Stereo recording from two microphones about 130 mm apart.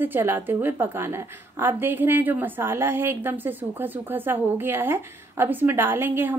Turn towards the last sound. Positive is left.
turn(degrees=-15)  # may be behind; listen again after turning